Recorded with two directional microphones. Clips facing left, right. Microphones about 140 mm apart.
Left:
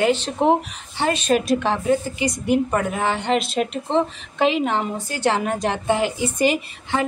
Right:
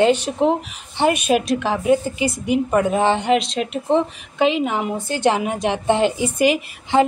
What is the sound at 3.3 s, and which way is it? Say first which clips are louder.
A woman's voice: right 1 dB; 5° left (ahead or behind).